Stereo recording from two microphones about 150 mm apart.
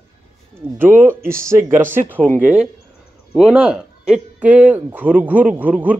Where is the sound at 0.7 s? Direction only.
15° right (ahead or behind).